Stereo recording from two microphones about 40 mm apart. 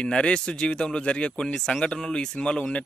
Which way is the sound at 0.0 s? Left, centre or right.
Left.